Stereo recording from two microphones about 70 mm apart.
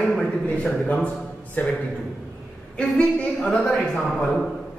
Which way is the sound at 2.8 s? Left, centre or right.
Centre.